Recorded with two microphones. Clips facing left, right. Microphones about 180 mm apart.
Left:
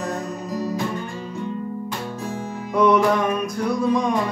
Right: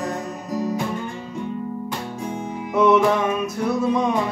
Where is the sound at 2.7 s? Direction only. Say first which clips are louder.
Right 1 dB; 5° right (ahead or behind).